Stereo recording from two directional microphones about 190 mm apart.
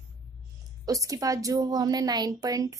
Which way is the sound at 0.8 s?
20° right (ahead or behind).